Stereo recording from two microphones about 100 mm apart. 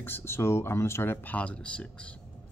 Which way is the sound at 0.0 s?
25° left (ahead or behind).